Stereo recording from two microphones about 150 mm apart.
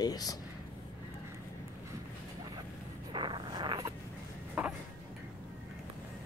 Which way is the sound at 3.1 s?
30° right (ahead or behind).